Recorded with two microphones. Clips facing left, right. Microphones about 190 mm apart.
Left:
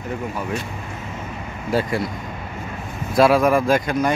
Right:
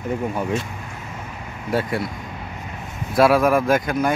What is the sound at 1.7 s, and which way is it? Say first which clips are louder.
Speech: left 1 dB; centre (ahead or behind).